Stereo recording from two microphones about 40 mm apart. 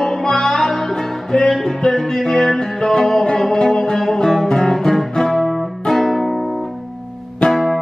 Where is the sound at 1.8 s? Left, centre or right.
Centre.